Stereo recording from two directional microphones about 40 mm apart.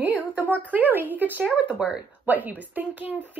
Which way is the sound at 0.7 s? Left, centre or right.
Right.